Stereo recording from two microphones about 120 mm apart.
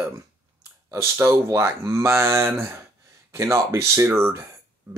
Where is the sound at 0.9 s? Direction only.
20° right (ahead or behind).